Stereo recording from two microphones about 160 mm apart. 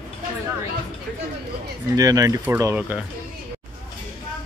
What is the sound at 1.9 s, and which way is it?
Speech, 20° right (ahead or behind).